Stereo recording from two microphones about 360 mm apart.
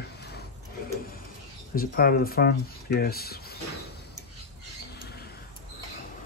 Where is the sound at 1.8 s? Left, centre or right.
Left.